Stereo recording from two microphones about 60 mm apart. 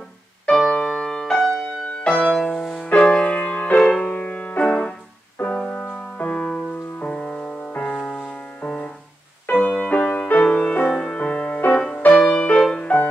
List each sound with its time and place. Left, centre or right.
0.5 s music: centre
3.3 s music: left
5.6 s music: centre
6.1 s music: left
10.9 s music: centre
12.8 s music: left